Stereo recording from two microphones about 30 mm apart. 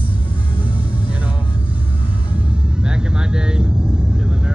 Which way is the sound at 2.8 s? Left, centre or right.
Right.